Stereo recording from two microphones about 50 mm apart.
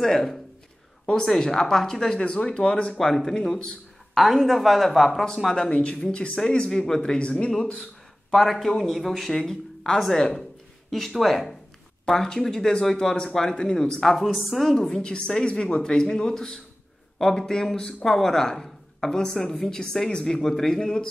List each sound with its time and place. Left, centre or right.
0.0 s a woman's voice: centre
8.3 s a woman's voice: centre
14.1 s speech: centre
15.0 s a woman's voice: centre